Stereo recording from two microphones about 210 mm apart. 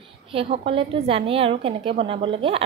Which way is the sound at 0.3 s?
25° right (ahead or behind).